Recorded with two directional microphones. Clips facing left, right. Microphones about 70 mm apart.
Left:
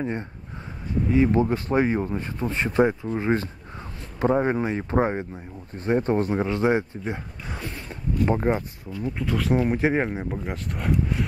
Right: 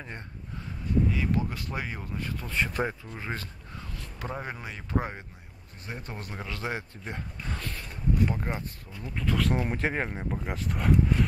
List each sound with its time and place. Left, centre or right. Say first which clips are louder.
1.1 s speech: left 10 dB; left
2.8 s speech: left 10 dB; centre
3.1 s speech: left 13 dB; left
9.0 s speech: left 2 dB; centre